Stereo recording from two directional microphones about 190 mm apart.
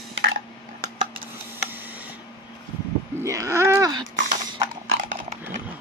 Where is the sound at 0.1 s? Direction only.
70° right (ahead or behind).